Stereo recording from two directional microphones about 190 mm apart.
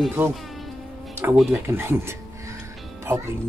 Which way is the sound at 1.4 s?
10° right (ahead or behind).